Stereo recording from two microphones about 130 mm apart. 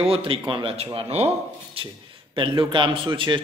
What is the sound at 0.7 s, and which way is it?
Speech, 55° right (ahead or behind).